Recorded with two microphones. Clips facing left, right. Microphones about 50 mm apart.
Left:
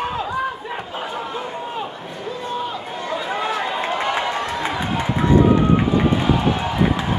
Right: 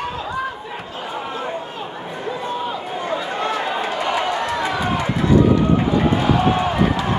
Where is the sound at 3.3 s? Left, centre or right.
Centre.